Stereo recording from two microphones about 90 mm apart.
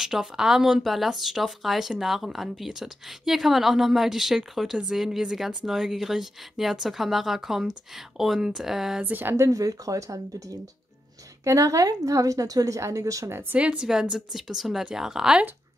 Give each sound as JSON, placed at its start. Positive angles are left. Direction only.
{"t": 0.0, "sound": "speech", "side_deg": -5}
{"t": 9.0, "sound": "a woman's voice", "side_deg": -20}
{"t": 9.5, "sound": "speech", "side_deg": -40}
{"t": 13.6, "sound": "speech", "side_deg": -10}